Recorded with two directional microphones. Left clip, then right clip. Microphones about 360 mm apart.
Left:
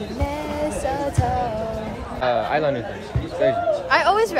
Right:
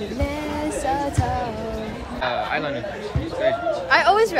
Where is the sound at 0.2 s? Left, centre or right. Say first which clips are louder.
Left 2 dB; centre.